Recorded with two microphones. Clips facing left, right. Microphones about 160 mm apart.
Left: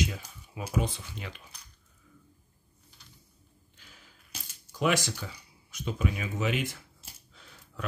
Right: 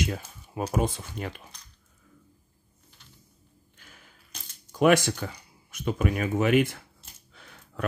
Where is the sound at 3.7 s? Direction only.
55° right (ahead or behind).